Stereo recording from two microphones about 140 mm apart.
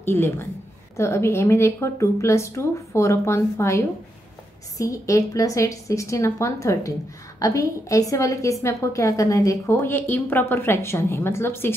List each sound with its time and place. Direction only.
0.0 s a woman's voice: 15° left (ahead or behind)